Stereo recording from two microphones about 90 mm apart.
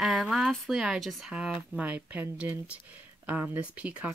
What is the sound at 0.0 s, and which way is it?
A woman's voice, centre (ahead or behind).